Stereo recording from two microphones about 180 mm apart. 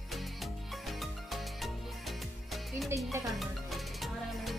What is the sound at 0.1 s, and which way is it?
Music, centre (ahead or behind).